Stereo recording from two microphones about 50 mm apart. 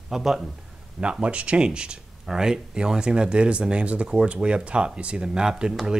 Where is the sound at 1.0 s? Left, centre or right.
Right.